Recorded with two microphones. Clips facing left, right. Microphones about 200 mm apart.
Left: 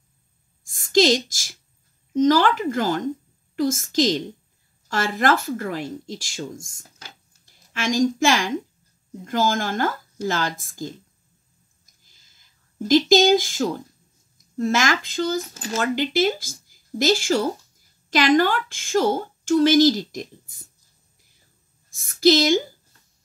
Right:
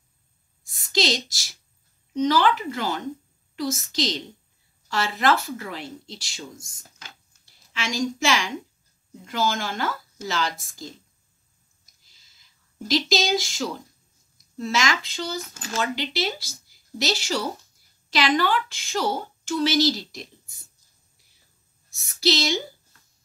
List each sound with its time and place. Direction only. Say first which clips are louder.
0.7 s a sound: left 8 dB; 45° left (ahead or behind)
2.1 s a woman's voice: left 4 dB; 45° left (ahead or behind)
7.0 s a sound: left 2 dB; 45° left (ahead or behind)
9.2 s a woman's voice: left 4 dB; 50° left (ahead or behind)
12.8 s a woman's voice: left 8 dB; 45° left (ahead or behind)
21.9 s a woman's voice: left 7 dB; 50° left (ahead or behind)